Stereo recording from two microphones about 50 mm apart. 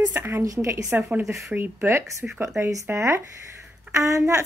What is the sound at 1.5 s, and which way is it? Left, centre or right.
Speech, right.